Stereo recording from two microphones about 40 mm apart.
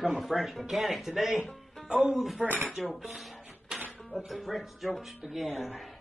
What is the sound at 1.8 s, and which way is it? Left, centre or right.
Music, centre.